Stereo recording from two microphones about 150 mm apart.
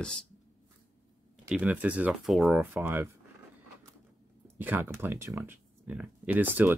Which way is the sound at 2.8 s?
15° right (ahead or behind).